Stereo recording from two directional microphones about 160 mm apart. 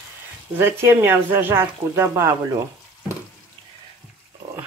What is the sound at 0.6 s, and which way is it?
Speech, 15° right (ahead or behind).